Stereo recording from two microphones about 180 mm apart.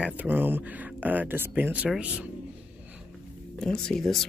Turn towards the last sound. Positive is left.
turn(degrees=0)  # may be behind; listen again after turning